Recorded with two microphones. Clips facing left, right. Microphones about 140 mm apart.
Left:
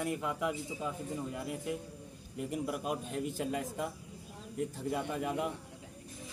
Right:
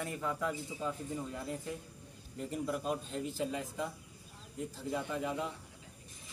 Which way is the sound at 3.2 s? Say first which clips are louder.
Left 1 dB; 55° left (ahead or behind).